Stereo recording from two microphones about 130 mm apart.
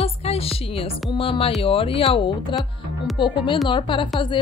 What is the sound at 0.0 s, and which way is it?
Music, 50° left (ahead or behind).